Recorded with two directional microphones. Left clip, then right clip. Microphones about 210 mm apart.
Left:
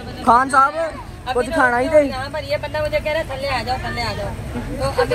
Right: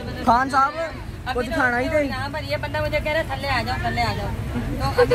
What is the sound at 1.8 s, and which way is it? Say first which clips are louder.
Speech: left 7 dB; 15° left (ahead or behind).